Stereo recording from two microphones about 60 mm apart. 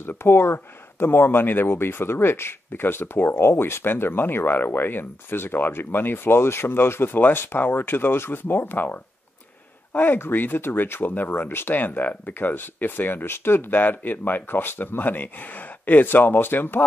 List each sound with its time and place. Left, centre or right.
0.0 s speech: left